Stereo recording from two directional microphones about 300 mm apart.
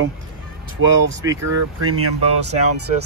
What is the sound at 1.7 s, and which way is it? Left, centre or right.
Speech, right.